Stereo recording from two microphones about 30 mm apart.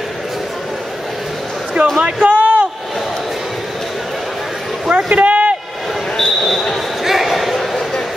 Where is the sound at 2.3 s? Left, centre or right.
Right.